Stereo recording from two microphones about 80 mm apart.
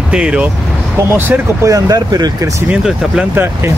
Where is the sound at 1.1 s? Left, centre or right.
Right.